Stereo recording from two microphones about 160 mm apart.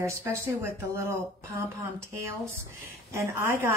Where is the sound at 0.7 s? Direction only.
15° right (ahead or behind).